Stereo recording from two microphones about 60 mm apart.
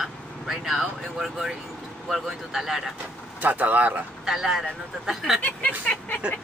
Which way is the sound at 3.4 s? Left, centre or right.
Right.